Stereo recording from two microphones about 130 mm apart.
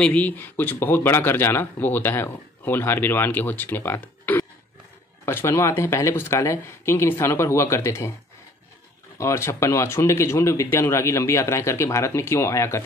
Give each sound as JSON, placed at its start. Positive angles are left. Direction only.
{"t": 0.0, "sound": "speech", "side_deg": 10}
{"t": 9.2, "sound": "speech", "side_deg": 20}